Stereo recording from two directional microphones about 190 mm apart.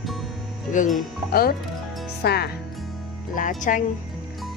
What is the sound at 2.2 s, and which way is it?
Music, 55° left (ahead or behind).